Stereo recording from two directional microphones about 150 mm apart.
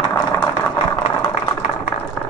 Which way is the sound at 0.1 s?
15° left (ahead or behind).